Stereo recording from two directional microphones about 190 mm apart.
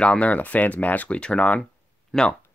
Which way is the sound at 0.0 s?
5° left (ahead or behind).